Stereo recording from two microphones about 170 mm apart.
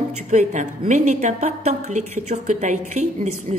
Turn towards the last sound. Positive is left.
turn(degrees=-45)  # may be behind; listen again after turning